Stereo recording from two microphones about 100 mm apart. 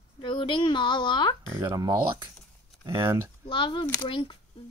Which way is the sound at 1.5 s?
35° right (ahead or behind).